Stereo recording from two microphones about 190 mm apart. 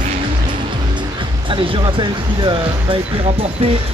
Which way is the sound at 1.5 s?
25° right (ahead or behind).